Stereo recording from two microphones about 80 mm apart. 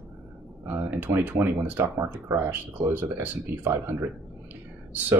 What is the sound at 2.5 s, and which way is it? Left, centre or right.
Speech, right.